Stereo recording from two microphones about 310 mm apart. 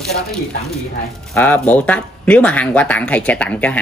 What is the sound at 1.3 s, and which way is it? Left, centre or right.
Speech, centre.